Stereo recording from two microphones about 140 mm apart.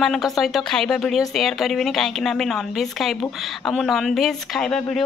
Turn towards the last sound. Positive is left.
turn(degrees=5)  # may be behind; listen again after turning